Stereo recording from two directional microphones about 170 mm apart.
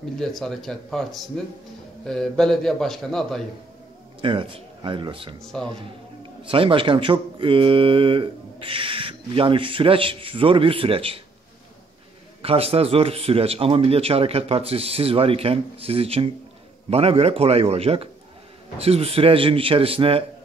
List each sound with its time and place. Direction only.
0.2 s a man's voice: centre (ahead or behind)
4.2 s speech: 30° right (ahead or behind)
5.4 s a man's voice: 5° left (ahead or behind)
6.4 s speech: 30° right (ahead or behind)
12.4 s speech: 35° right (ahead or behind)